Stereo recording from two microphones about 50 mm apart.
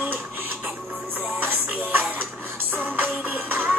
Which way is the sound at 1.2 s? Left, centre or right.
Right.